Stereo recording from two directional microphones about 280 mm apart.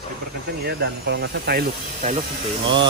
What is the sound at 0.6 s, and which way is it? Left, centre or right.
Speech, right.